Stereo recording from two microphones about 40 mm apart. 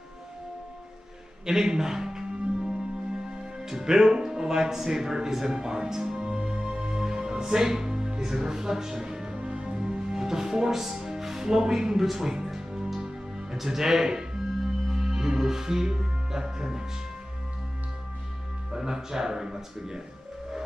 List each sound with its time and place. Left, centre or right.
1.4 s music: centre
12.1 s speech: centre
12.9 s music: centre
13.6 s speech: centre
14.9 s music: centre
18.7 s speech: centre